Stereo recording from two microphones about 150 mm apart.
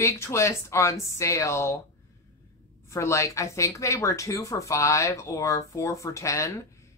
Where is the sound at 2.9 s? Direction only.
20° left (ahead or behind).